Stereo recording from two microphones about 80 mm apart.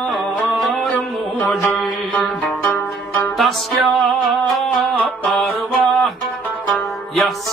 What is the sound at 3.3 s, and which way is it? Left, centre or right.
Music, centre.